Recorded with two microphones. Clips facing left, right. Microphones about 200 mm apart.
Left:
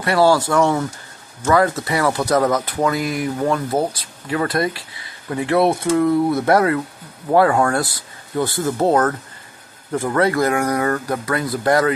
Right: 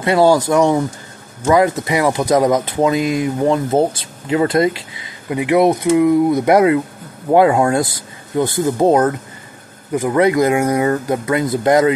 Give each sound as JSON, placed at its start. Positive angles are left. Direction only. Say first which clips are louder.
{"t": 0.0, "sound": "speech", "louder": "right 3 dB", "side_deg": -20}